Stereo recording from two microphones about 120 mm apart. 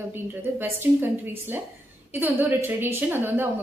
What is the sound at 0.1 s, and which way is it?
A woman's voice, 15° right (ahead or behind).